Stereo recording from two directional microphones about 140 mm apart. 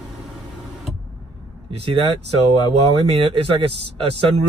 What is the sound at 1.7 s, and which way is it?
Speech, 45° right (ahead or behind).